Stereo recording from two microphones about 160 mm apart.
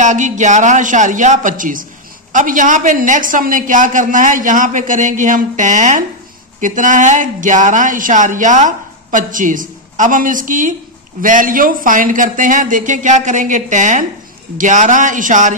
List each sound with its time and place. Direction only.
0.0 s a woman's voice: 50° right (ahead or behind)